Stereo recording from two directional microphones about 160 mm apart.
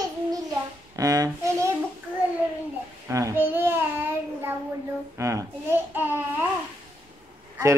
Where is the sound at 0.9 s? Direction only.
20° right (ahead or behind).